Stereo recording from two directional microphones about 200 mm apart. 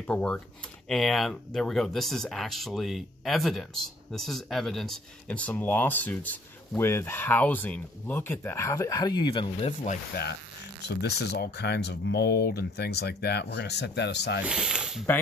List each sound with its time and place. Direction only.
0.0 s speech: 5° left (ahead or behind); by 9.9 s 25° left (ahead or behind)
10.8 s speech: 55° left (ahead or behind)
14.5 s speech: 5° right (ahead or behind)